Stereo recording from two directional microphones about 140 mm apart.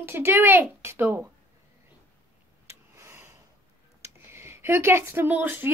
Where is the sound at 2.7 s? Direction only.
15° right (ahead or behind).